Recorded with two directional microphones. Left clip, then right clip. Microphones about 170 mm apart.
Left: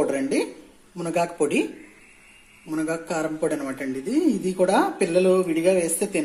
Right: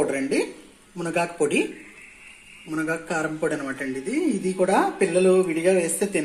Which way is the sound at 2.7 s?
Centre (ahead or behind).